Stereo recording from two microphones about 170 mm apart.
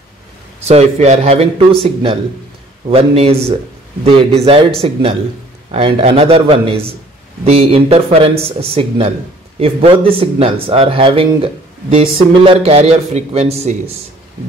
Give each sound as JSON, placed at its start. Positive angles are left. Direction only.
{"t": 0.7, "sound": "speech", "side_deg": -40}
{"t": 5.7, "sound": "speech", "side_deg": -35}